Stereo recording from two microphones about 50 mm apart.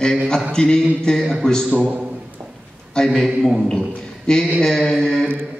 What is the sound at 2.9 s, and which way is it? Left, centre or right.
Speech, centre.